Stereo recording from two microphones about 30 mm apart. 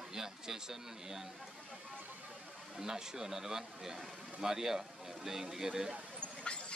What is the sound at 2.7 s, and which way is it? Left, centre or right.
Speech, centre.